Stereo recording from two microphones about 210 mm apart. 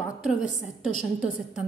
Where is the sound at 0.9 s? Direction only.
40° left (ahead or behind).